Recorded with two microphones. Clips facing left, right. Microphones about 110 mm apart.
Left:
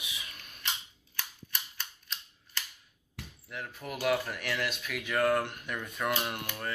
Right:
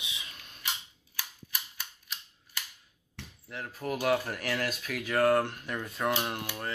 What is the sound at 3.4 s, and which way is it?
Speech, 35° right (ahead or behind).